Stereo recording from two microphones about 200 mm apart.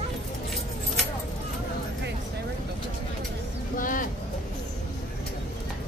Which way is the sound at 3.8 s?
40° left (ahead or behind).